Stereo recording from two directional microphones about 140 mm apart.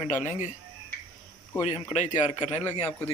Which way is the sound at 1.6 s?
55° left (ahead or behind).